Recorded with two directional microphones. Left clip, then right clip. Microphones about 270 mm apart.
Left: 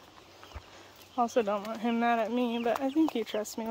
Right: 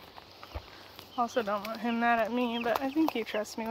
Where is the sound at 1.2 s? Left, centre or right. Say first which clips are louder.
Left 2 dB; left.